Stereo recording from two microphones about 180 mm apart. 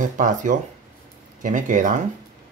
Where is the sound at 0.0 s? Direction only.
45° right (ahead or behind).